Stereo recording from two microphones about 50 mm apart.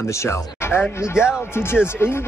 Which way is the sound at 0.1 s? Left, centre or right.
Left.